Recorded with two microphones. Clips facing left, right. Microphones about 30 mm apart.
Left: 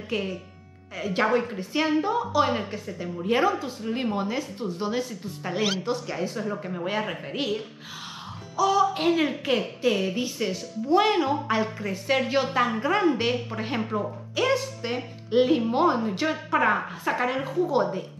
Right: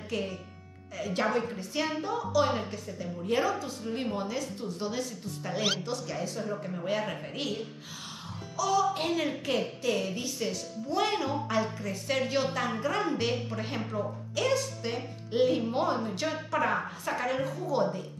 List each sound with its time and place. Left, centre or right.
0.1 s speech: left